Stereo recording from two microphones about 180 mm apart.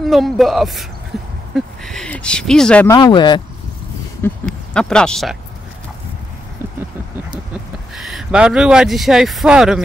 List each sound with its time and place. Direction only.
0.0 s speech: centre (ahead or behind)
2.9 s speech: 25° left (ahead or behind)
4.5 s speech: 5° left (ahead or behind)
7.9 s speech: centre (ahead or behind)